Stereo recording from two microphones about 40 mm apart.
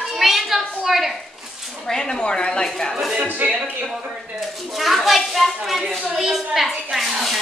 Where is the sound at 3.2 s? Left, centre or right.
Right.